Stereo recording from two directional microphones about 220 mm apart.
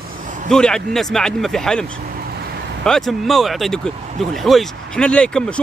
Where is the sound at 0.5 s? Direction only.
5° left (ahead or behind).